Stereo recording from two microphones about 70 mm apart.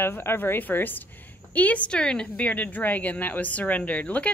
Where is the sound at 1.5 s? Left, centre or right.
Left.